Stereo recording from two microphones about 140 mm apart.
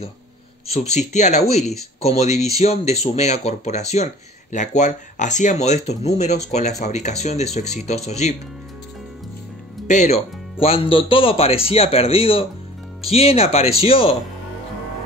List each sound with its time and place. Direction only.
0.7 s speech: 55° left (ahead or behind)
9.8 s speech: 55° left (ahead or behind)